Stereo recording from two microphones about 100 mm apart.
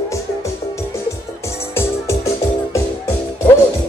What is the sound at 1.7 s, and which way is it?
Music, 25° left (ahead or behind).